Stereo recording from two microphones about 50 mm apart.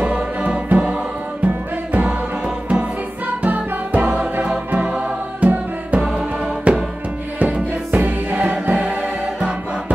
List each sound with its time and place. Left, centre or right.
0.0 s music: right
3.4 s music: right
4.1 s music: right